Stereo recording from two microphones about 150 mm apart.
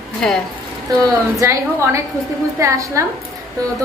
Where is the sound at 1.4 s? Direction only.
20° right (ahead or behind).